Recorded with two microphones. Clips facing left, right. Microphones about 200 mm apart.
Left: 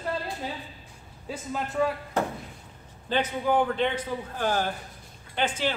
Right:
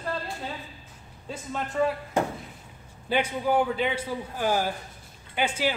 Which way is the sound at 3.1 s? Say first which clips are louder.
Even; 10° right (ahead or behind).